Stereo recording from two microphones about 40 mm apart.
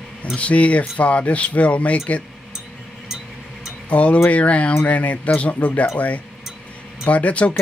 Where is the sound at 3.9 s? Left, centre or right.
Left.